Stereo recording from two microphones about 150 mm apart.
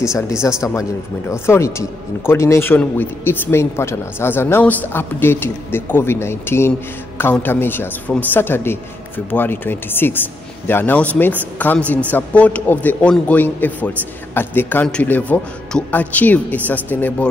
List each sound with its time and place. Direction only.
0.0 s speech: 20° left (ahead or behind)